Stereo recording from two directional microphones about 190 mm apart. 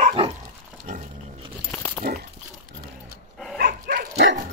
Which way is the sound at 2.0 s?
50° right (ahead or behind).